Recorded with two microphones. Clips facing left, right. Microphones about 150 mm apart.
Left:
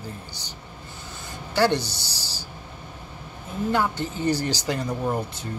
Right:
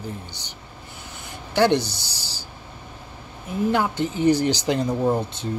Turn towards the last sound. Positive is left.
turn(degrees=-20)  # may be behind; listen again after turning